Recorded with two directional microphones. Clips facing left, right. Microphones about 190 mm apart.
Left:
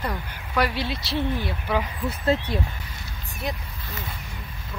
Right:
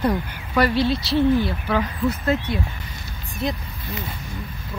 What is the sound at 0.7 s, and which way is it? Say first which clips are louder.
Speech: right 9 dB; 10° left (ahead or behind).